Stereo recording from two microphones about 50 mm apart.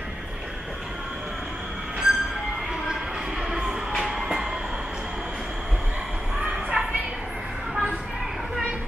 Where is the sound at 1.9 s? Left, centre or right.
Centre.